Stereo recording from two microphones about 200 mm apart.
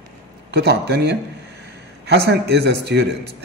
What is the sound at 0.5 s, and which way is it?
A man's voice, 55° right (ahead or behind).